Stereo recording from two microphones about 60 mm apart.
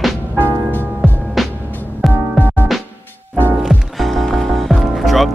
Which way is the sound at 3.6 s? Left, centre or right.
Centre.